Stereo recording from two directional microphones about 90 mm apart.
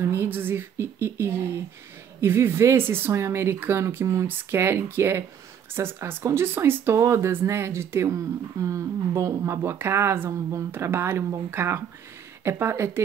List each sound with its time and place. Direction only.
0.1 s speech: 25° right (ahead or behind)